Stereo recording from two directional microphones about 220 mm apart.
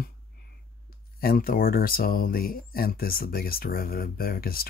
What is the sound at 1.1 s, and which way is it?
Speech, 40° left (ahead or behind).